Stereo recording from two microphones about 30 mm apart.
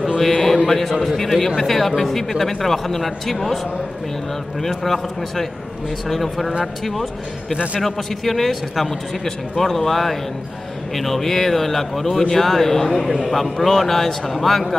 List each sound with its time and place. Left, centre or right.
0.2 s a sound: centre
0.7 s a man's voice: centre
4.6 s a man's voice: centre
7.5 s a man's voice: right
7.8 s a man's voice: centre